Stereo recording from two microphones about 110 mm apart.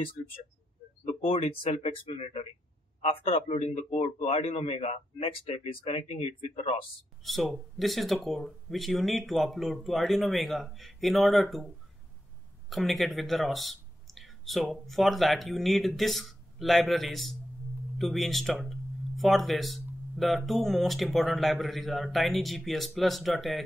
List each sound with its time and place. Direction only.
1.2 s speech: 60° left (ahead or behind)
3.4 s a man's voice: 90° left
5.5 s speech: 55° left (ahead or behind)
7.2 s speech: centre (ahead or behind)